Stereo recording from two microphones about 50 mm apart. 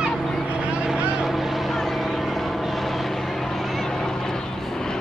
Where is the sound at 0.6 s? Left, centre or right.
Right.